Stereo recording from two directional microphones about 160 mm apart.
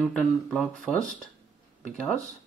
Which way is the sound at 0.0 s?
5° left (ahead or behind).